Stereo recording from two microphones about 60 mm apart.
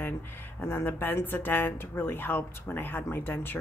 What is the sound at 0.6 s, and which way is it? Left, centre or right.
Speech, left.